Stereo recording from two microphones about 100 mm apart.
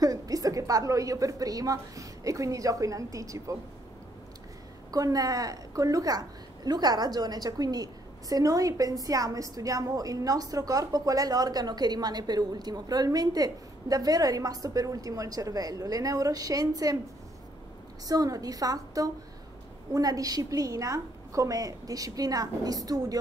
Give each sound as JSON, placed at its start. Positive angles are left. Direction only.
{"t": 0.0, "sound": "a woman's voice", "side_deg": -35}
{"t": 4.9, "sound": "a woman's voice", "side_deg": -35}
{"t": 18.0, "sound": "a woman's voice", "side_deg": -35}